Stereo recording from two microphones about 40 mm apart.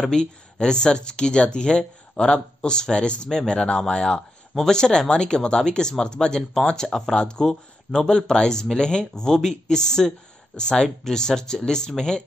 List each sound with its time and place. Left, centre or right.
0.1 s speech: centre